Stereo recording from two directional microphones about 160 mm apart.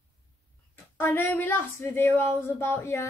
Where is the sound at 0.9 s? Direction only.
15° left (ahead or behind).